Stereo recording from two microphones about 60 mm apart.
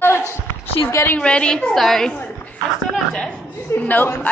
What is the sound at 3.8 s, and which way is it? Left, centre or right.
Speech, left.